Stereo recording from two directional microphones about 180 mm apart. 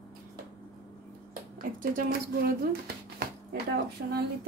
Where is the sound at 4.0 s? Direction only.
90° right.